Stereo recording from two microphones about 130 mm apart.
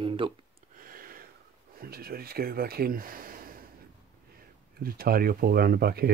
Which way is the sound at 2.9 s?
90° right.